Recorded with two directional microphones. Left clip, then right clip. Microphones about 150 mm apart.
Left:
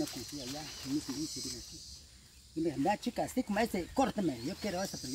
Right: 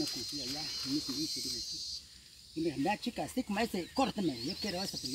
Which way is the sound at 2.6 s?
10° right (ahead or behind).